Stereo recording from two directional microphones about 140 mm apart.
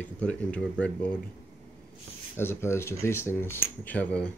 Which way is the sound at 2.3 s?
15° left (ahead or behind).